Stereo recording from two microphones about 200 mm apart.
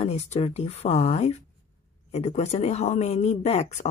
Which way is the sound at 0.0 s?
30° left (ahead or behind).